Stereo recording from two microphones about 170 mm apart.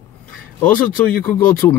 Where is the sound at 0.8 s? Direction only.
55° left (ahead or behind).